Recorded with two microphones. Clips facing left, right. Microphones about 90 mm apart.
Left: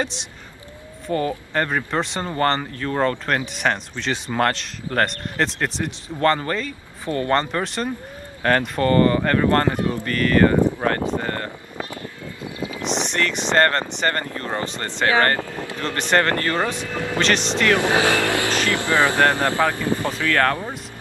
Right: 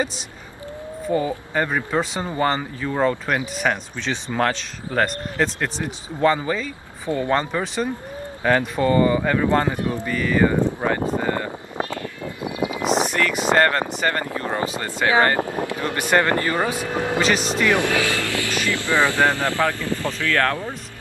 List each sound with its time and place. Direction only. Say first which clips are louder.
1.1 s speech: even; 10° right (ahead or behind)
12.4 s a sound: right 5 dB; 20° right (ahead or behind)
12.8 s a sound: right 4 dB; 45° right (ahead or behind)
13.1 s speech: right 1 dB; 5° right (ahead or behind)
17.8 s speech: left 3 dB; 30° left (ahead or behind)
18.7 s speech: even; 20° left (ahead or behind)